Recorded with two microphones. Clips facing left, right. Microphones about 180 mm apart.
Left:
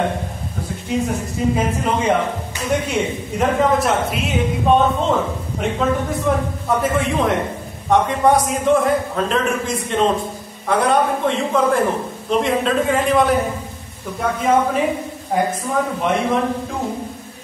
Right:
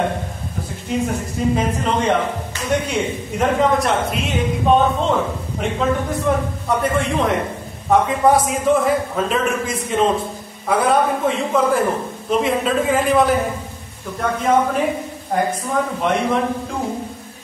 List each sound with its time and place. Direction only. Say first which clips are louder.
1.6 s a man's voice: even; 5° left (ahead or behind)